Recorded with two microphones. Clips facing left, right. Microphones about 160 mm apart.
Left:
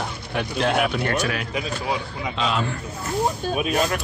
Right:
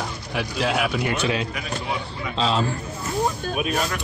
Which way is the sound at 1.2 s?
25° right (ahead or behind).